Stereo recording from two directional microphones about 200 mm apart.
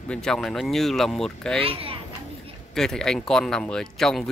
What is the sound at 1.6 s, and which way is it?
Speech, 30° right (ahead or behind).